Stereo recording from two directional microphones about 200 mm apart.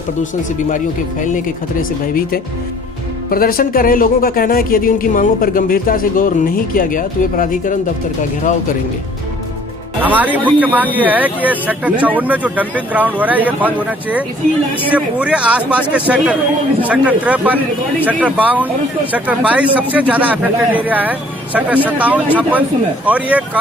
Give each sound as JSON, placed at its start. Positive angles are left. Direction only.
{"t": 0.2, "sound": "speech", "side_deg": 40}
{"t": 10.0, "sound": "a man's voice", "side_deg": -10}